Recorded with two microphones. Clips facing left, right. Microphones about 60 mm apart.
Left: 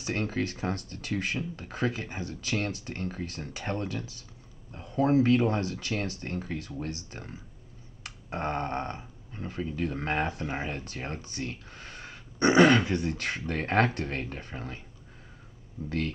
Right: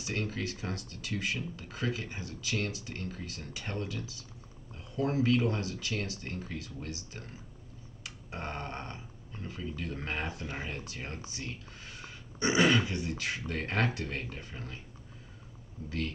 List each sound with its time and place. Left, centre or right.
0.0 s speech: left
8.0 s a sound: left
9.5 s speech: left
10.9 s speech: left